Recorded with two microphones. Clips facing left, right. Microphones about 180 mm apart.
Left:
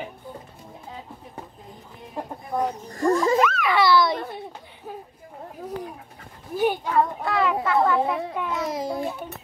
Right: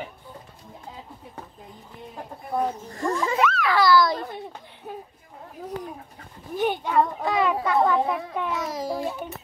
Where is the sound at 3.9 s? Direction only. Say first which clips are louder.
Even; 25° left (ahead or behind).